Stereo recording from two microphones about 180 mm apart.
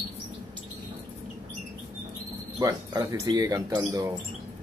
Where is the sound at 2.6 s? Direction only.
20° right (ahead or behind).